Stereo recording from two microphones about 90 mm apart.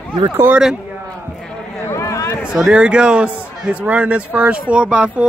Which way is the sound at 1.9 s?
35° left (ahead or behind).